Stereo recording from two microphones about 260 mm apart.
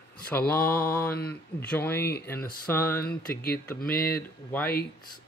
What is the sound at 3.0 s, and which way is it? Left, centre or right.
Speech, left.